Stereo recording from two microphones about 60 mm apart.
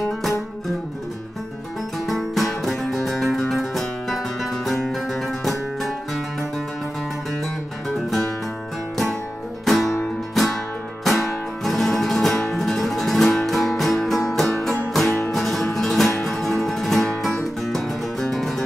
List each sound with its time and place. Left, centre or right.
2.0 s music: centre
9.7 s music: centre